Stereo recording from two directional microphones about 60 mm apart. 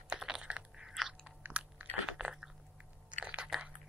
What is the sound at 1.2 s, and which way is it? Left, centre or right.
Chewing, right.